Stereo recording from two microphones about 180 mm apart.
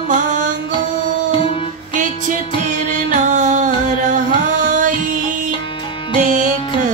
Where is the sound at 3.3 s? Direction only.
45° right (ahead or behind).